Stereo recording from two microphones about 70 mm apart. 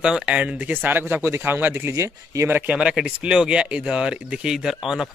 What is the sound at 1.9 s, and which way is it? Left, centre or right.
Speech, right.